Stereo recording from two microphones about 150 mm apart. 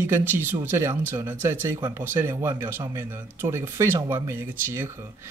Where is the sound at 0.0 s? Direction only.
15° right (ahead or behind).